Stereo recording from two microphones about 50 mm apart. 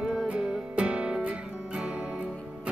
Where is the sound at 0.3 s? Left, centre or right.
Right.